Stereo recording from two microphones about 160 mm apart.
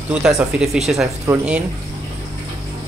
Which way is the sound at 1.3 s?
15° right (ahead or behind).